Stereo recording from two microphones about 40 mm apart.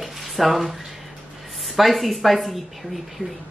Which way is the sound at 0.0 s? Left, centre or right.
Centre.